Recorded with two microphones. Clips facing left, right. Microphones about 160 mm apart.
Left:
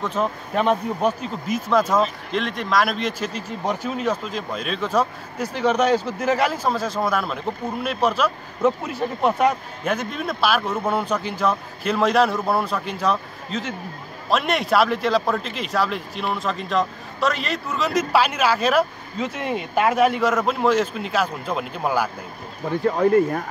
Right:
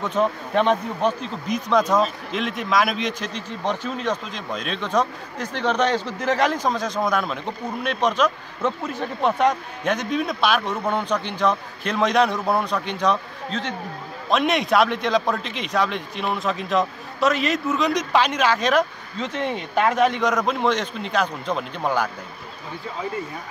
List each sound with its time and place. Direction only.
0.0 s a man's voice: centre (ahead or behind)
22.7 s speech: 60° left (ahead or behind)